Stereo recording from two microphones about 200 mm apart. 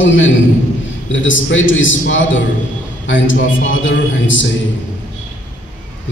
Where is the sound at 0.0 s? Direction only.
70° left (ahead or behind).